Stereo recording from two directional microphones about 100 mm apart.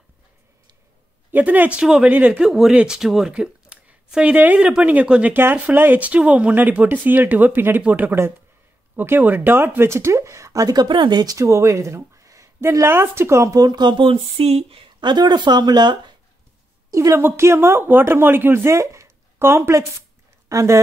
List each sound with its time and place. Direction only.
1.3 s speech: 15° right (ahead or behind); by 11.4 s 45° right (ahead or behind)
11.4 s speech: 30° right (ahead or behind); by 16.2 s 50° right (ahead or behind)
16.9 s speech: 25° right (ahead or behind)